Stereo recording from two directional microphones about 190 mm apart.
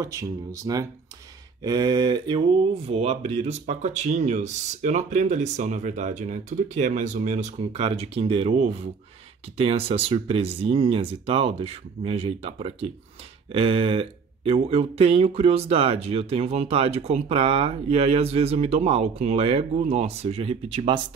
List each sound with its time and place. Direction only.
0.0 s speech: 15° right (ahead or behind)